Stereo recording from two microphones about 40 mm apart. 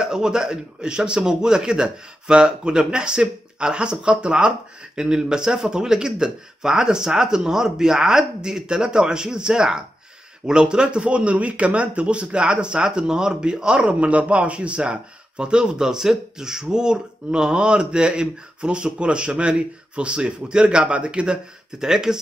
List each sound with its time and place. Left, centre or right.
0.0 s a man's voice: centre
21.7 s speech: centre